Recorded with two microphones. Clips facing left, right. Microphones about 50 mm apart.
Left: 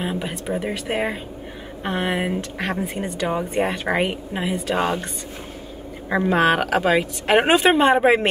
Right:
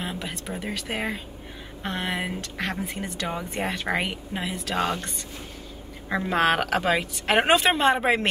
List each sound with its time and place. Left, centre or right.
0.0 s speech: centre